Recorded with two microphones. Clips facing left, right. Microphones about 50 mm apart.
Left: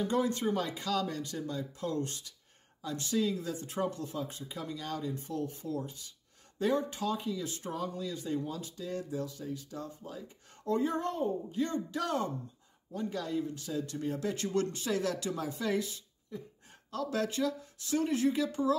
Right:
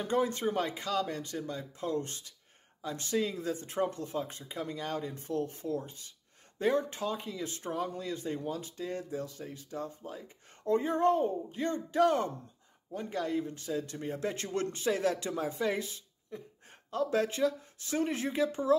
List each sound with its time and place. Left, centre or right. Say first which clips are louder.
0.0 s speech: even; right